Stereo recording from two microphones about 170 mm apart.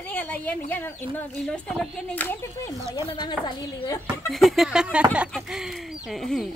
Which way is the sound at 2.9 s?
25° left (ahead or behind).